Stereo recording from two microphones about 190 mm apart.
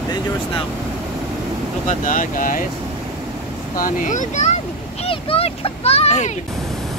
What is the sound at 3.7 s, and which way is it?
Speech, 45° left (ahead or behind).